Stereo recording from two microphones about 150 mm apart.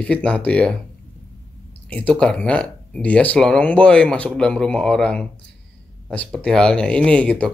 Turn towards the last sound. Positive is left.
turn(degrees=5)  # may be behind; listen again after turning